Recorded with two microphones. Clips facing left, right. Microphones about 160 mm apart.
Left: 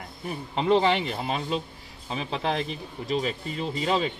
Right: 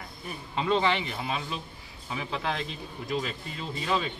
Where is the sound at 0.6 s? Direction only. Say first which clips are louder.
Left 5 dB; 25° left (ahead or behind).